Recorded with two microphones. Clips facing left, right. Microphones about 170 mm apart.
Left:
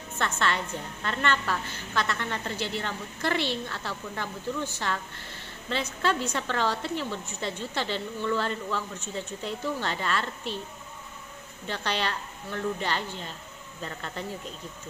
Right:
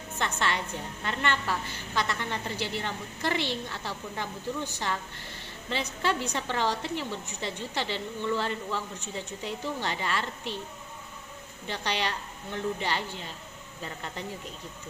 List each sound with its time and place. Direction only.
0.2 s a woman's voice: 15° right (ahead or behind)
11.6 s a woman's voice: 15° right (ahead or behind)